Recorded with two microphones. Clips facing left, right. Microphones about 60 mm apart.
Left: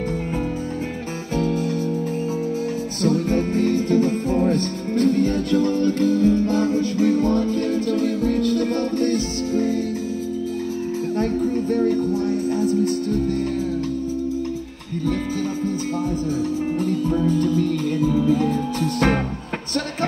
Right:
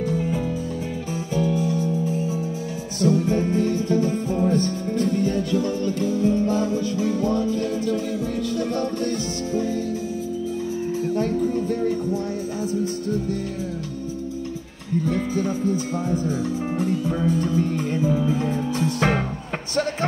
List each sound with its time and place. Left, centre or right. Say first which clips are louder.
1.3 s music: left 1 dB; left
1.6 s music: even; right
3.0 s music: right 1 dB; left
11.1 s music: left 2 dB; left
17.3 s music: left 2 dB; right